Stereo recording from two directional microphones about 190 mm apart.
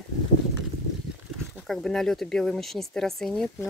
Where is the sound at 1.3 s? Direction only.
Centre (ahead or behind).